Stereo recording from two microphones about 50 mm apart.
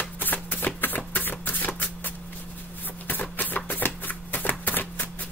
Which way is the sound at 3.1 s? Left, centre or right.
Left.